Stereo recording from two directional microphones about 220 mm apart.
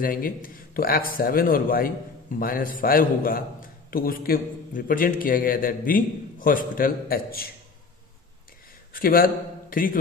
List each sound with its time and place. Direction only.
0.0 s a man's voice: 40° left (ahead or behind)
8.9 s a man's voice: 40° left (ahead or behind)